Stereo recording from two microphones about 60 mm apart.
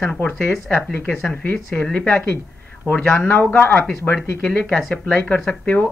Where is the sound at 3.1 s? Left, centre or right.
Left.